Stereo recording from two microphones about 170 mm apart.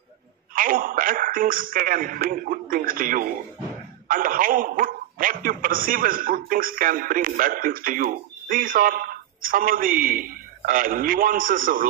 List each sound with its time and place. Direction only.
0.6 s a man's voice: 55° right (ahead or behind)